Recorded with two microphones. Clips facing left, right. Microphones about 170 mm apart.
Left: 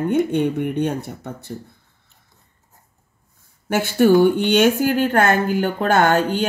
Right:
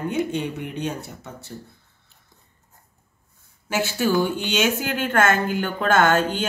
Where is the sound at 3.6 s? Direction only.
55° left (ahead or behind).